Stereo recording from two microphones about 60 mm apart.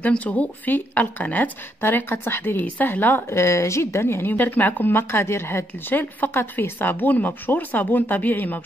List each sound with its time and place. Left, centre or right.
0.2 s speech: left
5.9 s speech: left